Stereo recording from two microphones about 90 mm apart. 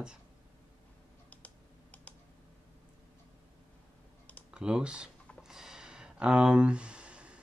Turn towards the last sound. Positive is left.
turn(degrees=-10)  # may be behind; listen again after turning